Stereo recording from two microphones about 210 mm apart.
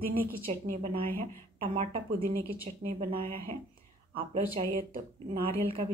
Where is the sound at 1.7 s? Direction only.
25° right (ahead or behind).